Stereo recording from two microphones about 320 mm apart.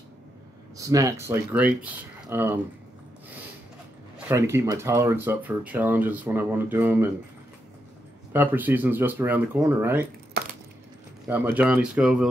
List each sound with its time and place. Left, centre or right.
0.7 s speech: centre
4.3 s speech: centre
8.3 s speech: centre
11.2 s speech: centre